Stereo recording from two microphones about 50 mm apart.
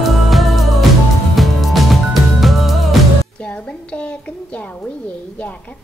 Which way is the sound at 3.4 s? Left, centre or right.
Left.